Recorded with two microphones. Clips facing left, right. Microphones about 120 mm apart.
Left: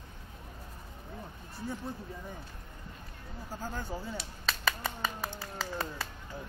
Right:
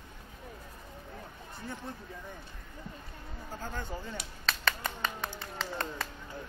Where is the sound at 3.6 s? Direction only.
10° left (ahead or behind).